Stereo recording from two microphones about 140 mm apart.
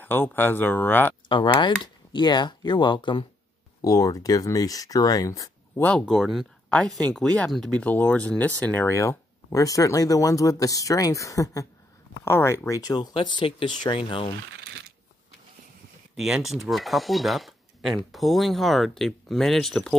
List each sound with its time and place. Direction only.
0.0 s speech: 15° left (ahead or behind)
1.3 s speech: 35° left (ahead or behind)
3.8 s speech: 25° left (ahead or behind)
5.9 s speech: 5° left (ahead or behind); by 14.3 s 40° left (ahead or behind)
16.2 s speech: 5° right (ahead or behind)